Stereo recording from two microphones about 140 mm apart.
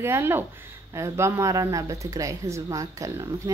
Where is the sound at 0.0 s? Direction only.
15° right (ahead or behind).